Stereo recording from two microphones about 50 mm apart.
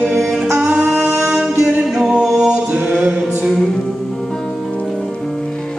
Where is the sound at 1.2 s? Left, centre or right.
Centre.